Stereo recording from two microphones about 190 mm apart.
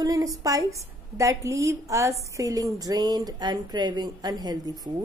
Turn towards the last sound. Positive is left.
turn(degrees=-20)  # may be behind; listen again after turning